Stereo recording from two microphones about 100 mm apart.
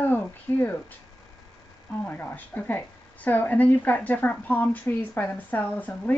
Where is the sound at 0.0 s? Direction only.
20° left (ahead or behind).